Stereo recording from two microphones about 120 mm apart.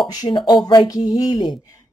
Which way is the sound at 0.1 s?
35° left (ahead or behind).